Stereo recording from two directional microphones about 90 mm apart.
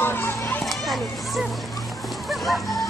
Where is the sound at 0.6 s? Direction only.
Centre (ahead or behind).